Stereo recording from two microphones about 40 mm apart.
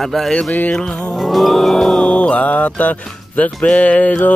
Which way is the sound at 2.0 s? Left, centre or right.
Left.